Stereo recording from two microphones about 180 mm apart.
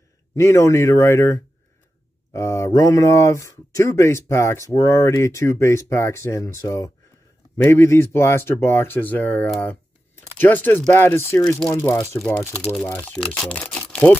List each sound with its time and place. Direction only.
0.3 s speech: 15° left (ahead or behind)